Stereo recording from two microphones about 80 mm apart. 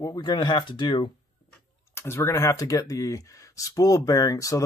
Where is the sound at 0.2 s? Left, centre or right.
Left.